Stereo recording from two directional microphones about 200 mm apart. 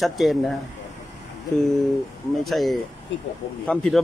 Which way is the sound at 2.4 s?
Centre (ahead or behind).